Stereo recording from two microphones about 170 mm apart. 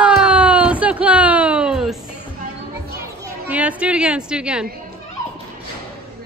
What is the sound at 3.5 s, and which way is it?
A woman's voice, 10° right (ahead or behind).